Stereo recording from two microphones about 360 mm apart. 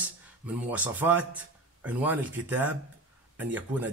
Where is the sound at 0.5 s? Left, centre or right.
Centre.